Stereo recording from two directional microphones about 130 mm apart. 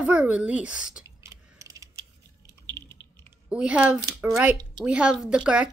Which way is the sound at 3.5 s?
10° right (ahead or behind).